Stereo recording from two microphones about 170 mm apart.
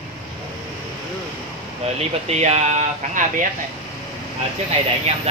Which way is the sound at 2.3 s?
40° right (ahead or behind).